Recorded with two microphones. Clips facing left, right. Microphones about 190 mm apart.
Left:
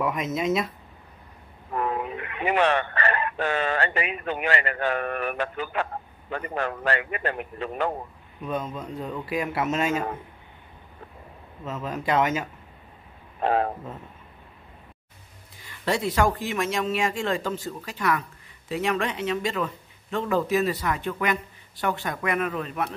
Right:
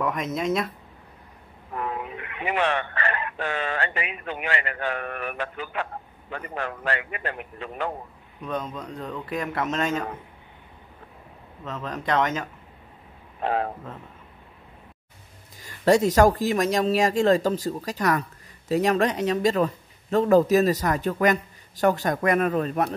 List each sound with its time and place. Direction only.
0.0 s speech: 5° left (ahead or behind)
1.8 s a man's voice: 45° left (ahead or behind)
8.4 s a man's voice: 5° left (ahead or behind)
11.6 s a man's voice: 5° left (ahead or behind)
13.4 s speech: 40° left (ahead or behind)
15.6 s speech: 45° right (ahead or behind)